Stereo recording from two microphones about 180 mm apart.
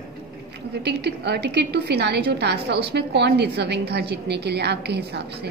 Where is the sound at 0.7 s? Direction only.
65° right (ahead or behind).